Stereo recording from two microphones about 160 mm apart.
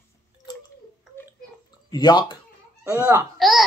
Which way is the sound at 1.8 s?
25° left (ahead or behind).